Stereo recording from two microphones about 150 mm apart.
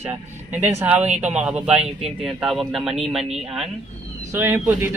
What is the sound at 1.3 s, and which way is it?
A man's voice, 10° right (ahead or behind).